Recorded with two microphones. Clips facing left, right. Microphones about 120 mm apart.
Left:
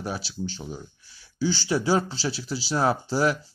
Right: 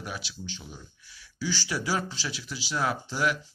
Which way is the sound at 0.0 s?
35° left (ahead or behind).